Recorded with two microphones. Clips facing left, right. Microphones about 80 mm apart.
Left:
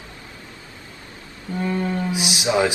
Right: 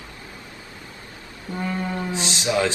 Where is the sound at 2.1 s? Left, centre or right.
Centre.